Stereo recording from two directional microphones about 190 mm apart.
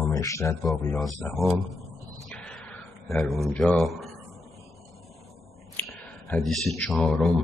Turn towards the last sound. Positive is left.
turn(degrees=5)  # may be behind; listen again after turning